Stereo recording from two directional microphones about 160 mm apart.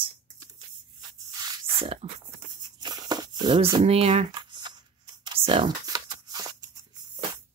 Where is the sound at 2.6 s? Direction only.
25° right (ahead or behind).